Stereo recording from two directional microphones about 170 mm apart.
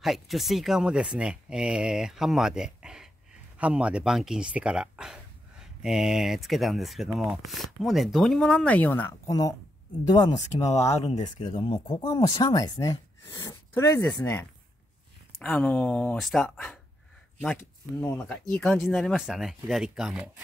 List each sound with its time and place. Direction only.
0.0 s speech: centre (ahead or behind); by 10.3 s 25° left (ahead or behind)
10.5 s speech: 40° left (ahead or behind); by 14.4 s 15° left (ahead or behind)
15.4 s speech: 10° left (ahead or behind)